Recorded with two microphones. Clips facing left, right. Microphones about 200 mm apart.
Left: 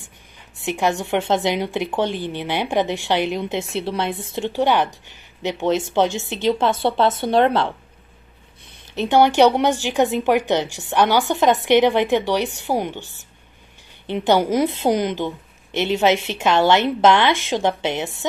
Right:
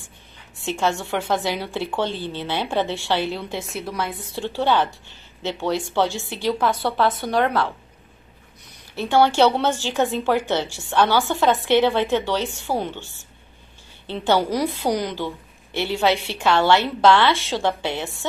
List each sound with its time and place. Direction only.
0.7 s a woman's voice: 15° left (ahead or behind)
8.9 s a woman's voice: 20° left (ahead or behind)